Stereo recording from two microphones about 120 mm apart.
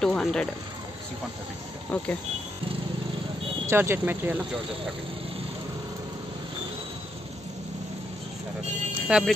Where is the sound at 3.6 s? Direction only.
20° right (ahead or behind).